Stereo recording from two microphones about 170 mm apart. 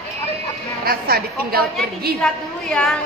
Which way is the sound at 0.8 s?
60° right (ahead or behind).